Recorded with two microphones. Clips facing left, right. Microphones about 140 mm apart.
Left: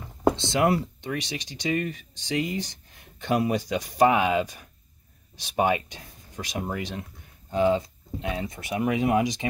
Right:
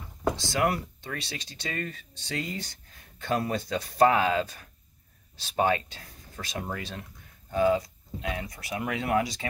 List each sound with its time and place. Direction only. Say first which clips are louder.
0.4 s speech: left 4 dB; 25° left (ahead or behind)